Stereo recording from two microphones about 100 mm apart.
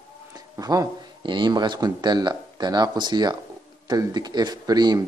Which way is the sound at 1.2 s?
50° right (ahead or behind).